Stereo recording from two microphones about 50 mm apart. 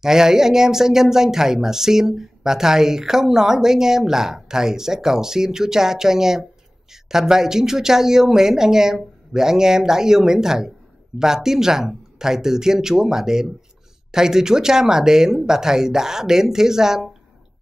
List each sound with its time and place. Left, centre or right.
0.0 s speech: centre